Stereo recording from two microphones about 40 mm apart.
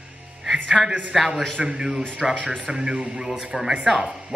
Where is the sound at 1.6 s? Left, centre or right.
Centre.